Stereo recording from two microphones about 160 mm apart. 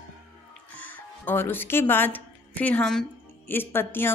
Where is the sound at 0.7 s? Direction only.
10° left (ahead or behind).